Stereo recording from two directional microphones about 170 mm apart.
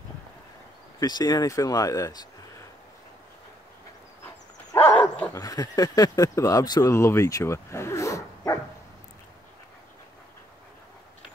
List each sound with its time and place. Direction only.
0.9 s speech: 25° left (ahead or behind)
4.7 s horse: 10° left (ahead or behind)
5.3 s speech: 20° left (ahead or behind)